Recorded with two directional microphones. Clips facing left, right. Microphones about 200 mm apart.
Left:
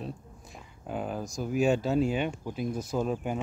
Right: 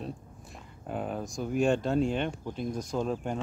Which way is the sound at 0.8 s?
Centre (ahead or behind).